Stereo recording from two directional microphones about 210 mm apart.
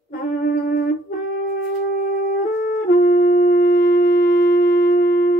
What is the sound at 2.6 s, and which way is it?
Music, 45° left (ahead or behind).